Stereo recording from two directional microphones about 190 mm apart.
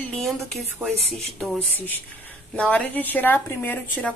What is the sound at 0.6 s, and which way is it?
Speech, 10° right (ahead or behind).